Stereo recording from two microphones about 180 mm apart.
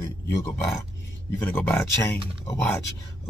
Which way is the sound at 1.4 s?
5° left (ahead or behind).